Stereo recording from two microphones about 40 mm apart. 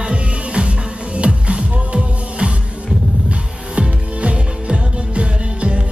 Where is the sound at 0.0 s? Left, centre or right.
Right.